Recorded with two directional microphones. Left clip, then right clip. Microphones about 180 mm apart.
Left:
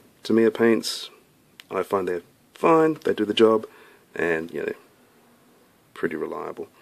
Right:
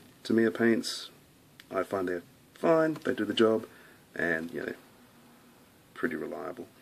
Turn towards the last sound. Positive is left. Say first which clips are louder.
# left 6 dB
turn(degrees=45)  # may be behind; listen again after turning